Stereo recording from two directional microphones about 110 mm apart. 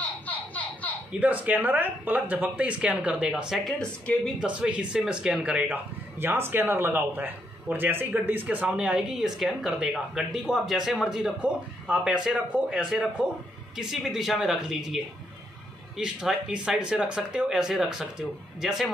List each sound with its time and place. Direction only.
0.3 s a sound: 15° left (ahead or behind)
1.2 s speech: 15° right (ahead or behind)
3.8 s speech: 10° left (ahead or behind)
4.4 s speech: 10° right (ahead or behind)
16.0 s speech: 5° right (ahead or behind)